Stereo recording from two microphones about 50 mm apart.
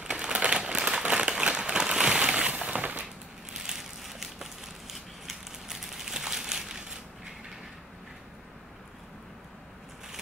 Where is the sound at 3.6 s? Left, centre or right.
Centre.